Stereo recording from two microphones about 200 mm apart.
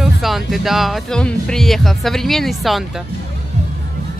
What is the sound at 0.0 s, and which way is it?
Speech, centre (ahead or behind).